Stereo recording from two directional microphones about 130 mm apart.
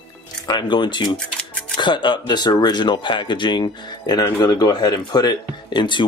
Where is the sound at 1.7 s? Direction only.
35° left (ahead or behind).